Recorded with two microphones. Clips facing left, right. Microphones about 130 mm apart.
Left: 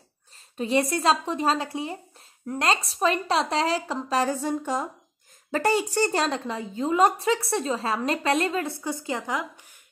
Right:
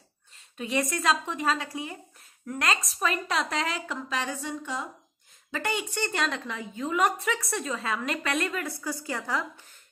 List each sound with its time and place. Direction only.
0.6 s a woman's voice: 30° left (ahead or behind)